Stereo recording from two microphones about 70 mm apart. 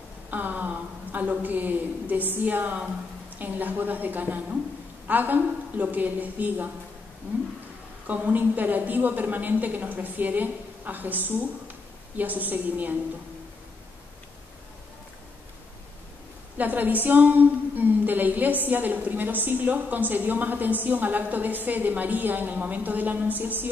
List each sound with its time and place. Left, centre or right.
0.3 s a woman's voice: right
8.1 s a woman's voice: right
16.5 s a woman's voice: right